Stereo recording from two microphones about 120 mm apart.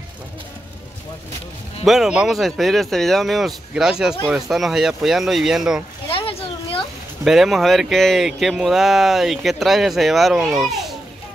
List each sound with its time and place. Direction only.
1.9 s speech: 5° right (ahead or behind)
6.0 s a sound: 50° left (ahead or behind)
7.2 s speech: centre (ahead or behind)